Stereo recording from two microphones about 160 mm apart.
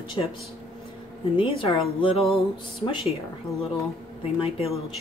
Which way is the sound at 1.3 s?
30° left (ahead or behind).